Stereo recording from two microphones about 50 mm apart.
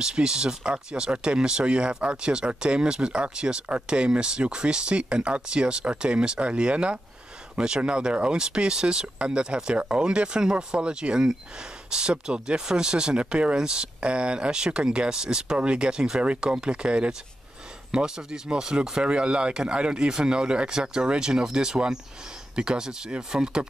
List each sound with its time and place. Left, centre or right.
0.0 s speech: centre